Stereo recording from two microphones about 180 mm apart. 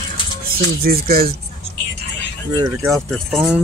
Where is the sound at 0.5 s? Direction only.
55° right (ahead or behind).